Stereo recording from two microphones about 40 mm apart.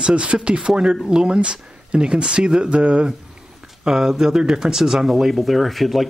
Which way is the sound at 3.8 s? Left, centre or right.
Centre.